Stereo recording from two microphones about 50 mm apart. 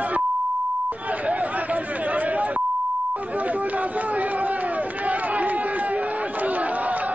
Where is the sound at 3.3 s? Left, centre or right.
Right.